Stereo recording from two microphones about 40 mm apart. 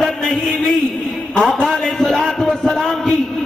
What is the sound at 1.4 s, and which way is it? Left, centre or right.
A man's voice, left.